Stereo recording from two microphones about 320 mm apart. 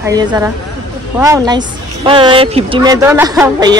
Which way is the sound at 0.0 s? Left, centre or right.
Centre.